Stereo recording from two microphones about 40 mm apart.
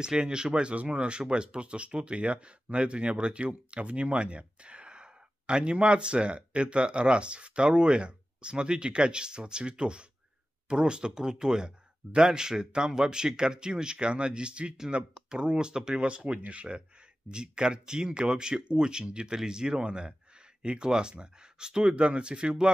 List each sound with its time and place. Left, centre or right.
0.0 s speech: right